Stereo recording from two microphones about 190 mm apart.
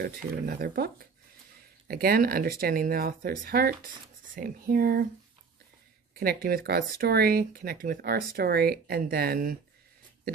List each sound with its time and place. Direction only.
0.0 s speech: 55° right (ahead or behind)
6.1 s speech: 50° right (ahead or behind)